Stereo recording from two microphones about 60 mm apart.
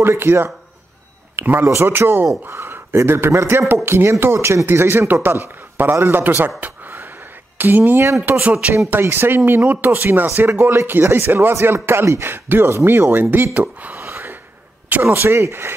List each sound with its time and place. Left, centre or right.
0.0 s a man's voice: right
6.6 s a sound: right
7.5 s speech: right
8.4 s speech: right
8.9 s speech: right
14.0 s gasp: right
15.1 s speech: right